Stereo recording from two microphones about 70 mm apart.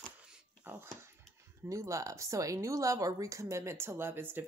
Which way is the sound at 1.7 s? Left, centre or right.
Right.